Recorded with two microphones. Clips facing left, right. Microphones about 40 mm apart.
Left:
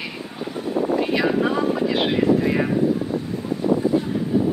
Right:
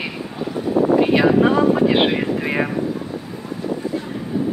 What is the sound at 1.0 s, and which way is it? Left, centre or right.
Speech, right.